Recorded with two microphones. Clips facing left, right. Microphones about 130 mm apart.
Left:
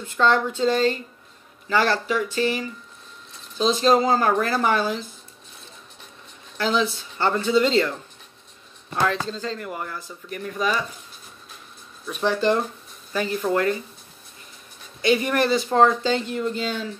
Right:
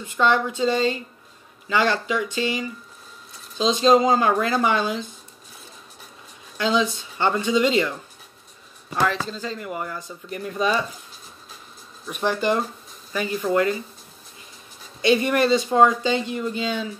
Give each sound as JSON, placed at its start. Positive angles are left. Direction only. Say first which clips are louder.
{"t": 0.0, "sound": "speech", "louder": "even", "side_deg": -10}
{"t": 6.6, "sound": "speech", "louder": "right 1 dB", "side_deg": -15}
{"t": 9.1, "sound": "speech", "louder": "left 1 dB", "side_deg": -10}
{"t": 12.0, "sound": "speech", "louder": "left 1 dB", "side_deg": -15}
{"t": 15.0, "sound": "speech", "louder": "right 1 dB", "side_deg": -20}